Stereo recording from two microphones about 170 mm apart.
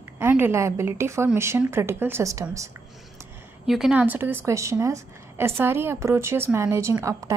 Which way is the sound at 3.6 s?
5° right (ahead or behind).